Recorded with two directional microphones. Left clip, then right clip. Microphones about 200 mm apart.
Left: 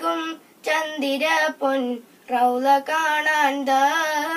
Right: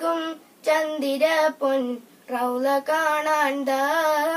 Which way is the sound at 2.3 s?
15° right (ahead or behind).